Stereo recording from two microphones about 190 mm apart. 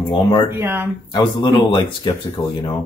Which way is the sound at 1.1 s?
25° left (ahead or behind).